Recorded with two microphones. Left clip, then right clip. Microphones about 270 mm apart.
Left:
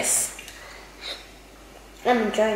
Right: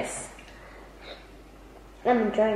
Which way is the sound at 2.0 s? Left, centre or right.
Centre.